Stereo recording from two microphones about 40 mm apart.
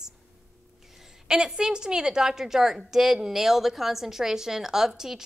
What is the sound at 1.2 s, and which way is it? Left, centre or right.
A woman's voice, centre.